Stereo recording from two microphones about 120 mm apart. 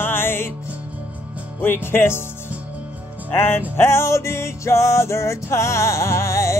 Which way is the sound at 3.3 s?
20° left (ahead or behind).